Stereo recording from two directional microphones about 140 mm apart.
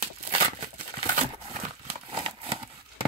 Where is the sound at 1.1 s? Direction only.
50° right (ahead or behind).